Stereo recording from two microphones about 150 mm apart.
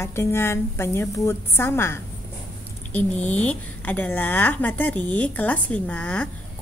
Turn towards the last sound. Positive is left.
turn(degrees=10)  # may be behind; listen again after turning